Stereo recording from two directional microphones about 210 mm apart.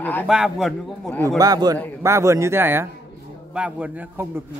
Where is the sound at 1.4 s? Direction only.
20° right (ahead or behind).